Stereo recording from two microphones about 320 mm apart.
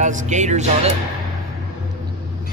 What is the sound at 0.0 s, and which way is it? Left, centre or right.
Speech, right.